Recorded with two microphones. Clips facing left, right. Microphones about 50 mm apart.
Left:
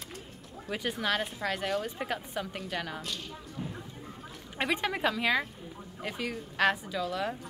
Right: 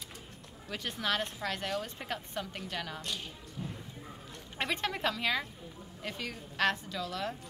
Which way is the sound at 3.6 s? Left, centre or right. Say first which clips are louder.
Left 2 dB; left.